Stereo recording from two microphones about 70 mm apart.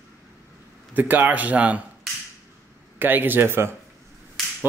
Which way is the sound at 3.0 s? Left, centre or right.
Right.